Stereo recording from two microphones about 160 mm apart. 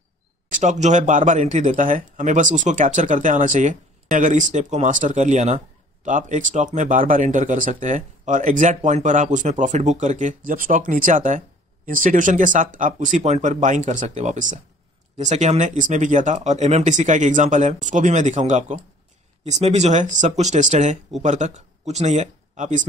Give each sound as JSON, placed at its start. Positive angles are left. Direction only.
{"t": 0.5, "sound": "speech", "side_deg": -50}